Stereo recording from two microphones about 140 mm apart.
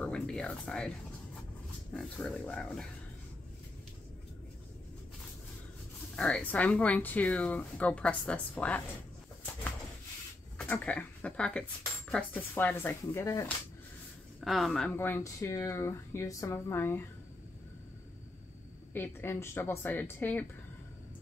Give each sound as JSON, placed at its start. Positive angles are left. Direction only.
{"t": 0.0, "sound": "speech", "side_deg": 5}
{"t": 2.0, "sound": "speech", "side_deg": 5}
{"t": 6.1, "sound": "speech", "side_deg": 5}
{"t": 10.6, "sound": "speech", "side_deg": 10}
{"t": 14.4, "sound": "speech", "side_deg": 0}
{"t": 15.0, "sound": "speech", "side_deg": 15}
{"t": 18.9, "sound": "speech", "side_deg": 15}